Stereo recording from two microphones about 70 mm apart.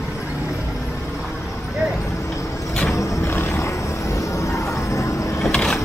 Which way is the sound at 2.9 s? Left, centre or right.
Left.